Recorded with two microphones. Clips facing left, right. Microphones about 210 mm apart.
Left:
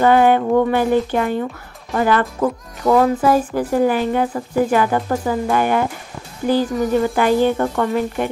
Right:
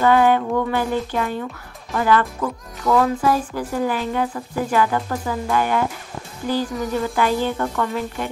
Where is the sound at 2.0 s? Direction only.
25° left (ahead or behind).